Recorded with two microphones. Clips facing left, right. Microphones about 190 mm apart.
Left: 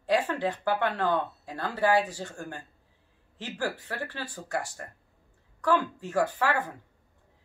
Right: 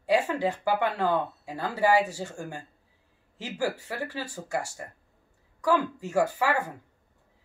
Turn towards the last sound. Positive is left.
turn(degrees=-10)  # may be behind; listen again after turning